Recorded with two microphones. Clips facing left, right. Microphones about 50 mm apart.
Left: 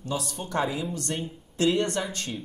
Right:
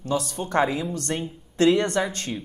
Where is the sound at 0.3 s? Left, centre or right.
Right.